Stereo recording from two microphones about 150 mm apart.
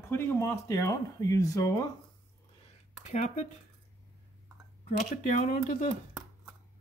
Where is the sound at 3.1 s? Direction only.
50° left (ahead or behind).